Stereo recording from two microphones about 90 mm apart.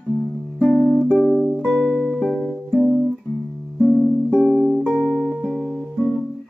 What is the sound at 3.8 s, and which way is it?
Music, 5° left (ahead or behind).